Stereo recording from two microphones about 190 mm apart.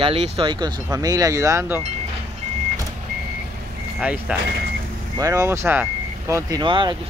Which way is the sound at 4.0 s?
5° right (ahead or behind).